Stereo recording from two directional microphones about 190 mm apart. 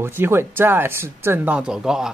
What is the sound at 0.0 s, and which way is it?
Speech, 10° right (ahead or behind).